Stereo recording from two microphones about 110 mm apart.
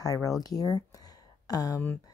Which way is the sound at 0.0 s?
30° left (ahead or behind).